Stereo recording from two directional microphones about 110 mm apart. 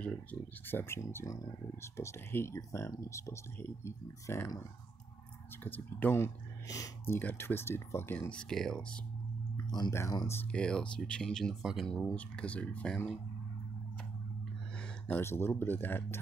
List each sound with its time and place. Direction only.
0.0 s speech: 15° left (ahead or behind)
5.6 s speech: 15° left (ahead or behind)
8.3 s speech: 5° left (ahead or behind)
9.7 s speech: 40° left (ahead or behind)
10.5 s speech: 10° left (ahead or behind)
14.8 s a sound: 10° left (ahead or behind)
15.2 s speech: 20° left (ahead or behind)